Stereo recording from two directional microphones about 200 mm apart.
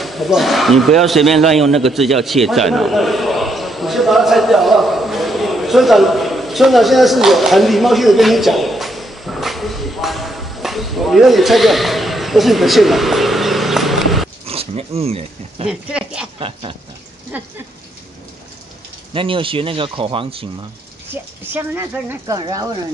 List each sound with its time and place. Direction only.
0.0 s a sound: centre (ahead or behind)
14.4 s speech: 30° right (ahead or behind)
15.7 s speech: 5° right (ahead or behind)
16.3 s speech: 25° right (ahead or behind)
17.3 s speech: 10° right (ahead or behind)
19.1 s speech: 25° right (ahead or behind)
21.1 s speech: 10° right (ahead or behind)